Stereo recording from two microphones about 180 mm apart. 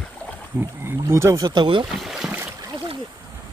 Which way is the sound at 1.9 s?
Centre (ahead or behind).